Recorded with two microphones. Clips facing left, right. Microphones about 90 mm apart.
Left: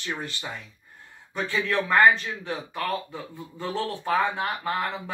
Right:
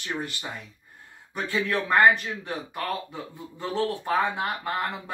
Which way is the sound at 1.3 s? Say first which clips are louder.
Left 1 dB; 15° right (ahead or behind).